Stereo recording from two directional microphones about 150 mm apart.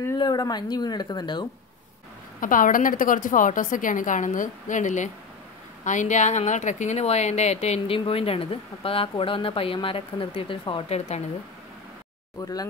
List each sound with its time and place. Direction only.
0.2 s a woman's voice: 25° left (ahead or behind)
2.4 s a woman's voice: 65° left (ahead or behind); by 11.2 s 45° left (ahead or behind)
12.4 s a woman's voice: 25° left (ahead or behind)